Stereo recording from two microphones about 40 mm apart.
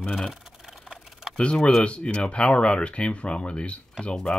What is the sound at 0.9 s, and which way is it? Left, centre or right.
Typing, centre.